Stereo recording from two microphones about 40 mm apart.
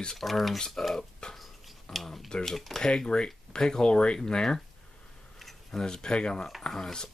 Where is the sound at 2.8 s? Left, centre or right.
Centre.